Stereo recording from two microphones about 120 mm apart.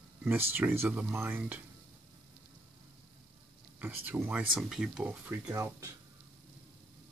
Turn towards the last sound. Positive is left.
turn(degrees=-25)  # may be behind; listen again after turning